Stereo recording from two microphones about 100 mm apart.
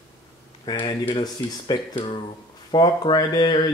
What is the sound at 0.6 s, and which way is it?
Speech, 55° left (ahead or behind).